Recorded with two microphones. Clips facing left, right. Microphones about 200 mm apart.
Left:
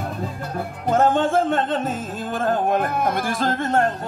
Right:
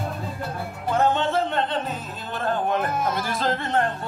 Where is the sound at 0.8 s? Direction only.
45° left (ahead or behind).